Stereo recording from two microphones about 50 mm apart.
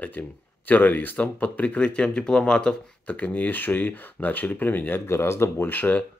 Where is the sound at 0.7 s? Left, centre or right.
Left; by 2.7 s centre.